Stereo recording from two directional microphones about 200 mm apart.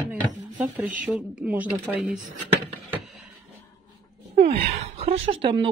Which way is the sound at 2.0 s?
35° right (ahead or behind).